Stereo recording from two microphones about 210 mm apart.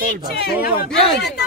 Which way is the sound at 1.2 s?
55° left (ahead or behind).